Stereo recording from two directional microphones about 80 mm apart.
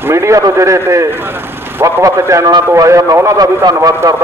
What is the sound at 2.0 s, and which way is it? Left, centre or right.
A man's voice, right.